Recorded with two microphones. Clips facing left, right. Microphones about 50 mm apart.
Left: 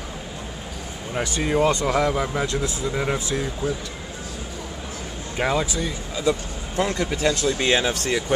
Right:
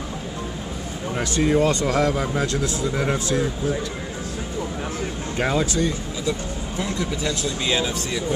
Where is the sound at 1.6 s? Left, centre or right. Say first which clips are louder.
Even; centre.